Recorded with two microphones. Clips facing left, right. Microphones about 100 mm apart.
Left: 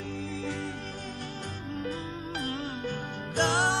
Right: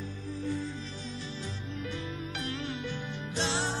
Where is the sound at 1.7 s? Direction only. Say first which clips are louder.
Left 5 dB; 40° left (ahead or behind).